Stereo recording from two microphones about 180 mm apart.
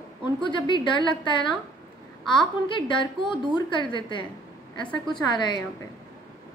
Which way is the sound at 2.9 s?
25° left (ahead or behind).